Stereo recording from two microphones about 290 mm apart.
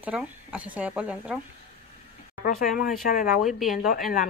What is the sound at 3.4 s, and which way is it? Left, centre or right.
Speech, centre.